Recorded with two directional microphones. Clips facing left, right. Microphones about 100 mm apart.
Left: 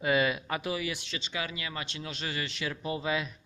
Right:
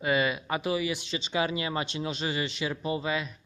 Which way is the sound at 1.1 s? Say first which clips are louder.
Right 7 dB; 20° right (ahead or behind).